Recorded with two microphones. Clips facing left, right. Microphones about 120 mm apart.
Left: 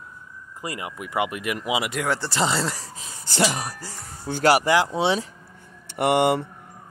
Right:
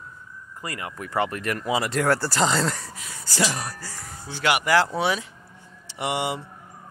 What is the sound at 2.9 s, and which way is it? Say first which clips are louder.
Speech: left 1 dB; 25° left (ahead or behind).